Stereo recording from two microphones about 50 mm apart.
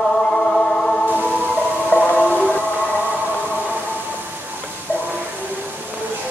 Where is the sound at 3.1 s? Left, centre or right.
Right.